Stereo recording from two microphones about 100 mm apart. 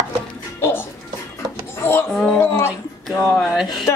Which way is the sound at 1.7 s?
25° left (ahead or behind).